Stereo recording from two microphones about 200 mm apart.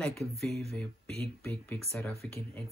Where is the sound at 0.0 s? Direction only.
Centre (ahead or behind).